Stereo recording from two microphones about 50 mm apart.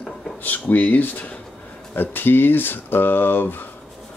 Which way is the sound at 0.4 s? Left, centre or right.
Left.